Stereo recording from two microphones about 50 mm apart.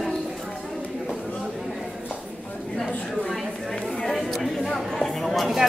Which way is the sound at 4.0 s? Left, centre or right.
Centre.